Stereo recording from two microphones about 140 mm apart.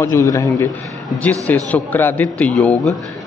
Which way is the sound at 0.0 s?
20° left (ahead or behind).